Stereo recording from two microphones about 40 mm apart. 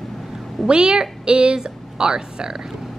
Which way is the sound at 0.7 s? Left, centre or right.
Right.